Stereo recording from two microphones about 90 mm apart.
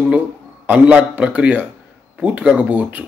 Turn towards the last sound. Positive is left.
turn(degrees=-15)  # may be behind; listen again after turning